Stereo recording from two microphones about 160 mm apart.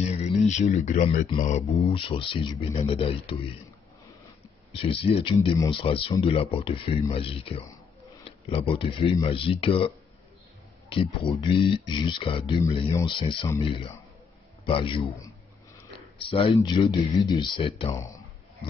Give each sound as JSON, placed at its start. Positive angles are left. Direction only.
{"t": 0.0, "sound": "a sound", "side_deg": 45}
{"t": 1.4, "sound": "speech", "side_deg": 45}
{"t": 4.8, "sound": "speech", "side_deg": 35}
{"t": 11.4, "sound": "speech", "side_deg": 30}
{"t": 16.3, "sound": "speech", "side_deg": 35}